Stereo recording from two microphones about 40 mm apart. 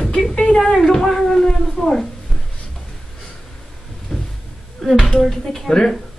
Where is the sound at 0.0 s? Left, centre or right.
Centre.